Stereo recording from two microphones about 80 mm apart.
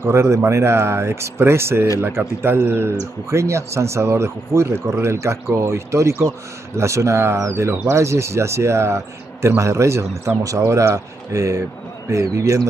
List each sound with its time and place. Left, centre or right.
0.0 s speech: right